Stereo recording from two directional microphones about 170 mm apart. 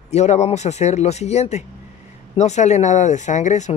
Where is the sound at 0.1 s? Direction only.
40° left (ahead or behind).